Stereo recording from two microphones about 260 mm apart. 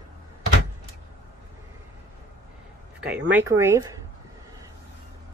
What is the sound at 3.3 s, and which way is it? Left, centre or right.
Speech, centre.